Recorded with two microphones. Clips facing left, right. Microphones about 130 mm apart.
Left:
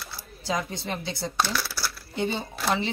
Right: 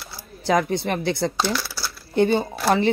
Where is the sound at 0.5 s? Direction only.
60° right (ahead or behind).